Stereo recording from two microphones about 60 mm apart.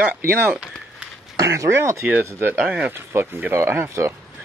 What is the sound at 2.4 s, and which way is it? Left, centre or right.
Speech, right.